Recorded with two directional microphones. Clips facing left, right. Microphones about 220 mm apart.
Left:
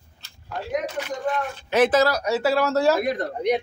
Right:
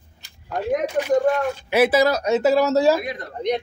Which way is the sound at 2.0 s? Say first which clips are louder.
Right 4 dB; 20° right (ahead or behind).